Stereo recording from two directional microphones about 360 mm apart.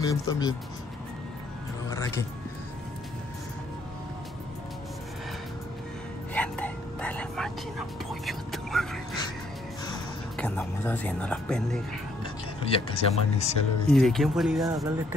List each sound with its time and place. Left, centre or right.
0.0 s speech: centre
1.9 s speech: centre
6.3 s whispering: centre
9.8 s speech: centre
12.6 s speech: centre
13.9 s speech: centre